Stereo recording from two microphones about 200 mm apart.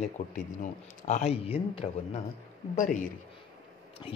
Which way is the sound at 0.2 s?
40° left (ahead or behind).